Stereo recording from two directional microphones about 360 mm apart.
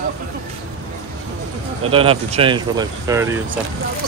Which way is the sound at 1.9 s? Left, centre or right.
Centre.